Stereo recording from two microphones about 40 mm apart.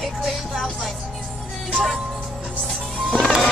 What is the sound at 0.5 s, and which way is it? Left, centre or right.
Music, centre.